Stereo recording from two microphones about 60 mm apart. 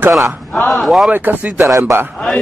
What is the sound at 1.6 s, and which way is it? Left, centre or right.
Speech, right.